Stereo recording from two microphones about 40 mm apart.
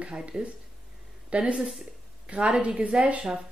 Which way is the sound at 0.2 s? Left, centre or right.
Right.